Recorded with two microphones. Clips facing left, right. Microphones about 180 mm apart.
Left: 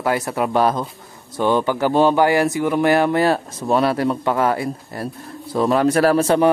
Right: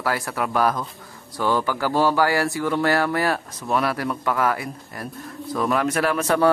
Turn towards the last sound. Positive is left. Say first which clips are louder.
# left 6 dB
turn(degrees=30)  # may be behind; listen again after turning